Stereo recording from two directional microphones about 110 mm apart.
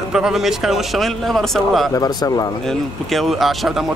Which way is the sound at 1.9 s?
35° left (ahead or behind).